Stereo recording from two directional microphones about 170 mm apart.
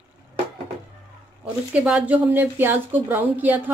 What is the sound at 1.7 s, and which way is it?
A woman's voice, 5° right (ahead or behind).